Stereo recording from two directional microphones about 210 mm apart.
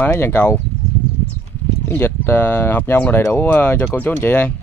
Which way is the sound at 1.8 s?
10° left (ahead or behind).